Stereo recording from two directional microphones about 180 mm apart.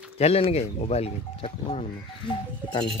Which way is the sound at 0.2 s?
35° left (ahead or behind).